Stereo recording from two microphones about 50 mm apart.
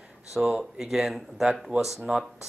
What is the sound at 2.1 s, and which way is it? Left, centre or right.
Speech, centre.